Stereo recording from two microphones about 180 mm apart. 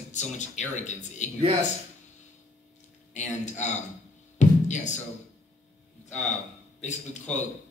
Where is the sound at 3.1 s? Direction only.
40° left (ahead or behind).